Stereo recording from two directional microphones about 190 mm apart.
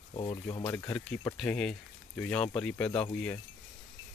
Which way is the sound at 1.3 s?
5° left (ahead or behind).